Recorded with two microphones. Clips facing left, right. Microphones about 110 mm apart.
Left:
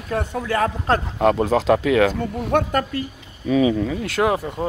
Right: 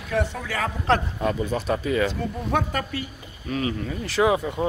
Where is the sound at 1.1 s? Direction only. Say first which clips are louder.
Left 8 dB; 75° left (ahead or behind).